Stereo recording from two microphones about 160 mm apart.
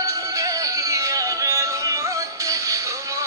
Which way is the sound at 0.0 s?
20° right (ahead or behind).